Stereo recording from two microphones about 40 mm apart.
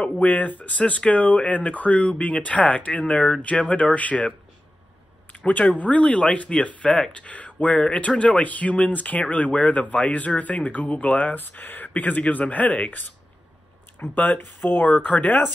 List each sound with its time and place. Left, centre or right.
0.2 s speech: left
5.3 s speech: left
6.9 s speech: left
7.2 s speech: left
8.4 s speech: left
11.3 s speech: left
14.1 s speech: left
15.0 s speech: left